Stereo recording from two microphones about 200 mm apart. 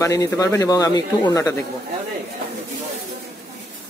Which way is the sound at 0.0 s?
15° left (ahead or behind).